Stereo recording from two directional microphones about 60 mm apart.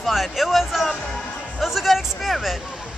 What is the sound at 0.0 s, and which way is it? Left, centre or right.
Music, centre.